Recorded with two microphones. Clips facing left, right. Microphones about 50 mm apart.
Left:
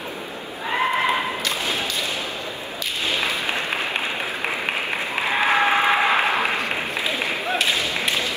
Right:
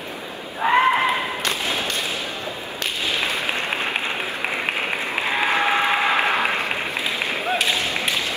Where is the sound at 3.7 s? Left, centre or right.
Centre.